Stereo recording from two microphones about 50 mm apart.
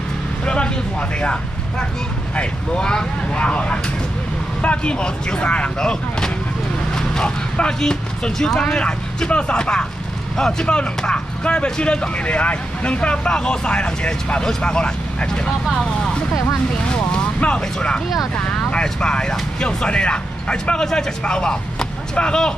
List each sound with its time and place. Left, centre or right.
1.2 s speech: centre